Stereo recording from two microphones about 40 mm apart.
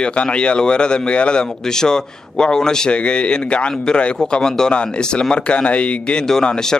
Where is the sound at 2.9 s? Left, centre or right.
Left.